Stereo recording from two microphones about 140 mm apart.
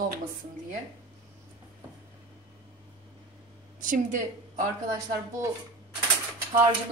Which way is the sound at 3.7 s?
65° right (ahead or behind).